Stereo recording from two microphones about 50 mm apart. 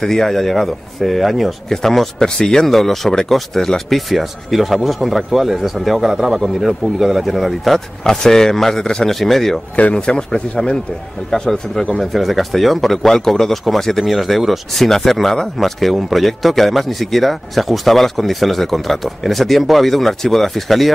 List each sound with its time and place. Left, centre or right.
0.0 s a man's voice: centre
9.9 s a man's voice: centre
12.0 s speech: centre